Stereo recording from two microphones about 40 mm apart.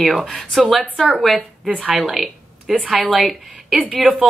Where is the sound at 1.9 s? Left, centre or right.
Centre.